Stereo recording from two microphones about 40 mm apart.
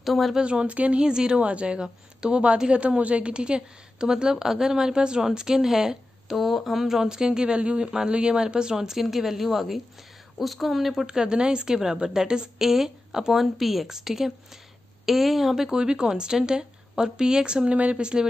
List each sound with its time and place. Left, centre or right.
0.0 s speech: centre
0.4 s a woman's voice: right
0.7 s speech: right
1.0 s a woman's voice: centre
8.7 s speech: centre
11.1 s speech: right; by 15.5 s centre
15.5 s a woman's voice: centre